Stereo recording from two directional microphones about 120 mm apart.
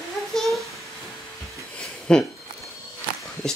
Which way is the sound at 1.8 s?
5° left (ahead or behind).